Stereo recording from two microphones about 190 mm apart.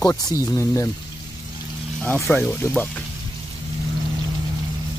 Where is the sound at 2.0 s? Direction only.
5° left (ahead or behind).